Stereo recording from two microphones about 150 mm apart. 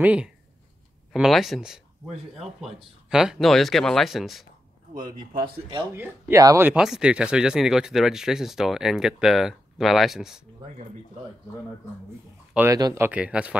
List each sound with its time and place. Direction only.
0.0 s speech: 10° right (ahead or behind)
4.9 s speech: 65° right (ahead or behind)
5.4 s speech: 35° right (ahead or behind)
5.9 s speech: 15° right (ahead or behind)
6.7 s speech: 5° right (ahead or behind)
12.5 s speech: 20° right (ahead or behind)
13.0 s speech: 10° right (ahead or behind)